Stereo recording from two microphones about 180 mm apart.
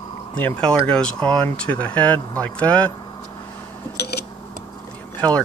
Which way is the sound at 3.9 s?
65° left (ahead or behind).